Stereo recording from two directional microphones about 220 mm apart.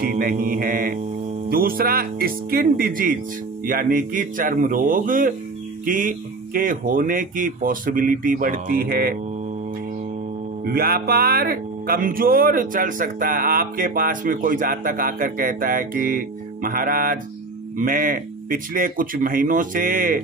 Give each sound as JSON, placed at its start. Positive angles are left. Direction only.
{"t": 0.0, "sound": "music", "side_deg": -40}
{"t": 10.6, "sound": "music", "side_deg": -45}